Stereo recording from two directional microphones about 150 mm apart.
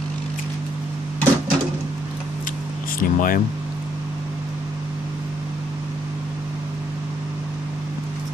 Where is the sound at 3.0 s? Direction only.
65° left (ahead or behind).